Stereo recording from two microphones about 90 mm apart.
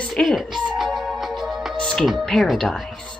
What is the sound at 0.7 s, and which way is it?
Music, 5° right (ahead or behind).